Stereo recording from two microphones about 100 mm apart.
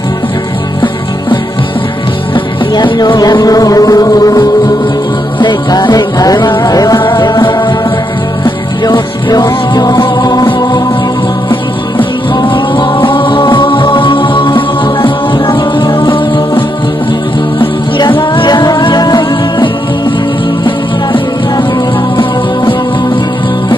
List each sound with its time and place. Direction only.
2.3 s music: 50° left (ahead or behind)
7.0 s music: 50° left (ahead or behind)
12.4 s music: 55° left (ahead or behind)